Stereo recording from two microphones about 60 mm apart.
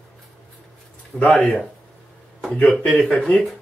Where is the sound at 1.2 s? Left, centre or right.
Left.